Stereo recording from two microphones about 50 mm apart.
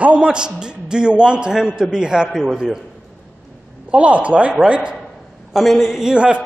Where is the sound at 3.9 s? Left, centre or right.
Right.